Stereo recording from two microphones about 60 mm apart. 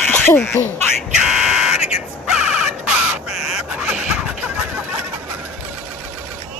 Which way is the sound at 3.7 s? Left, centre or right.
Centre.